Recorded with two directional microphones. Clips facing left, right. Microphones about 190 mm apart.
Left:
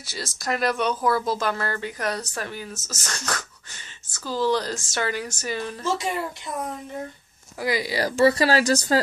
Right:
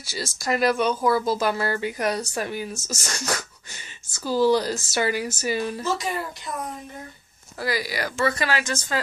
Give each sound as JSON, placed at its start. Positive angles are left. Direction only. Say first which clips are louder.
{"t": 0.0, "sound": "speech", "louder": "right 2 dB", "side_deg": 0}
{"t": 7.6, "sound": "speech", "louder": "left 2 dB", "side_deg": 20}
{"t": 8.0, "sound": "speech", "louder": "left 9 dB", "side_deg": 35}